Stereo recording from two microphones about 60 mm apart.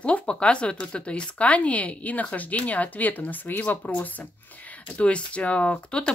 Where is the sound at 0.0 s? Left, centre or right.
Centre.